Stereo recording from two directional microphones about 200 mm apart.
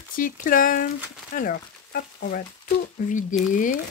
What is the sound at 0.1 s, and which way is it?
Speech, 45° left (ahead or behind).